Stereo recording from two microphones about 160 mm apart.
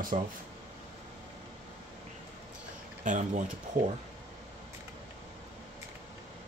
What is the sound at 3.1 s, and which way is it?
Speech, 50° right (ahead or behind).